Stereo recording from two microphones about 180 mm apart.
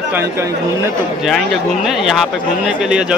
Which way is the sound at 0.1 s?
15° right (ahead or behind).